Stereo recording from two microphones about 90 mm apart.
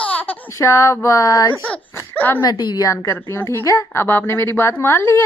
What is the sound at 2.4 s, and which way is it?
Speech, 50° left (ahead or behind).